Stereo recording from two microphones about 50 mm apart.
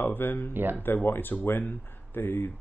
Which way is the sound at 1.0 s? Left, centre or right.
Left.